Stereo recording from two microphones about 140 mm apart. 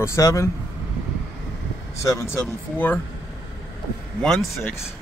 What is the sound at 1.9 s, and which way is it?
Speech, 20° left (ahead or behind).